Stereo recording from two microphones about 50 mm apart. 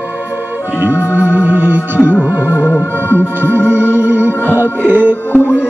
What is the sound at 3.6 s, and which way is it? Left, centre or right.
Music, left.